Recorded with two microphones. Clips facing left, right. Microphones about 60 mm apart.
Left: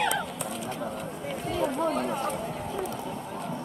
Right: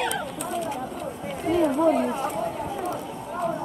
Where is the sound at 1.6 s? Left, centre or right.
Centre.